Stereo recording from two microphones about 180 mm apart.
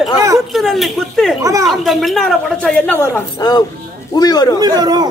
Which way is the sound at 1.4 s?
20° right (ahead or behind).